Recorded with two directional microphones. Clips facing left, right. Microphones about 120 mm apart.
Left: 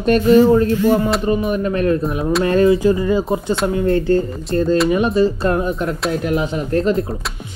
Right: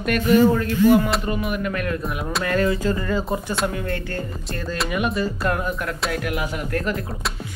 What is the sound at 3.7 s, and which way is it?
Speech, 30° left (ahead or behind).